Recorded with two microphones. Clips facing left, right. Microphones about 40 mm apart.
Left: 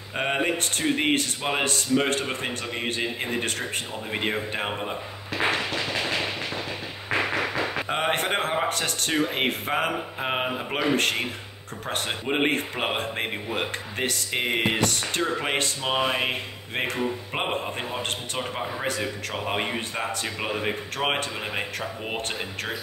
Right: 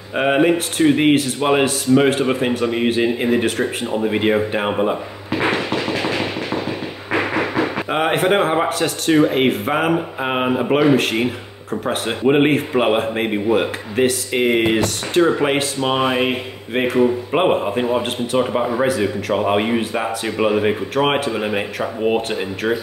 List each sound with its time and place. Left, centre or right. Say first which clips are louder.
0.1 s a man's voice: right 10 dB; centre
5.7 s a sound: right 7 dB; right
7.1 s a man's voice: right 5 dB; right
11.0 s a man's voice: right 6 dB; centre
18.9 s speech: right 10 dB; centre
19.3 s a man's voice: right 11 dB; centre